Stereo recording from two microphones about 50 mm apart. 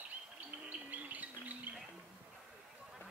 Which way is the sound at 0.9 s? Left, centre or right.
Right.